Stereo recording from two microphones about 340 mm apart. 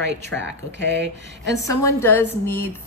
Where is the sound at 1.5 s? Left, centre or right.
Centre.